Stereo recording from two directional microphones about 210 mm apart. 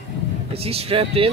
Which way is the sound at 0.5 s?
30° right (ahead or behind).